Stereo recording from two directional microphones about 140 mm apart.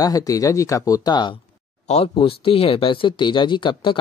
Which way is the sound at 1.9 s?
45° left (ahead or behind).